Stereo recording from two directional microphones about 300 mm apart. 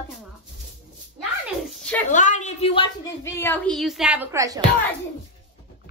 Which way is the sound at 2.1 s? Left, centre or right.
Left.